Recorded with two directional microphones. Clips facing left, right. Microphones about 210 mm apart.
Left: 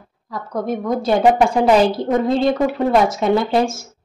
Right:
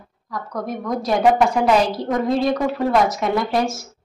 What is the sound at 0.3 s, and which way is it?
Speech, 25° left (ahead or behind).